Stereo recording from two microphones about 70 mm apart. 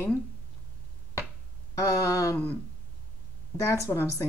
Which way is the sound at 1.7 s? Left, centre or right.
Left.